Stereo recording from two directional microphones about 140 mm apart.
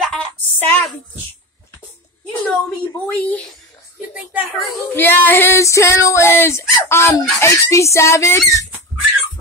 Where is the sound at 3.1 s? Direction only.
10° left (ahead or behind).